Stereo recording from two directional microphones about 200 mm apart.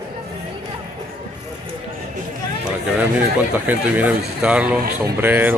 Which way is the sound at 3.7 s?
10° right (ahead or behind).